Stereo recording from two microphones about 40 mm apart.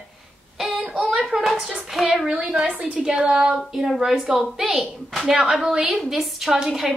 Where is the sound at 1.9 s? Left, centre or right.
Centre.